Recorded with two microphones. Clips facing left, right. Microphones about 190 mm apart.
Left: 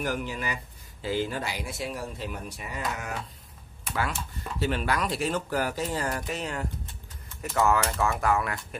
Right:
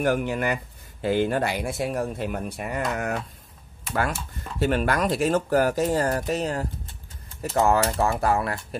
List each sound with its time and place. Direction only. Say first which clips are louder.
0.0 s speech: right 7 dB; 60° right (ahead or behind); by 8.5 s 35° right (ahead or behind)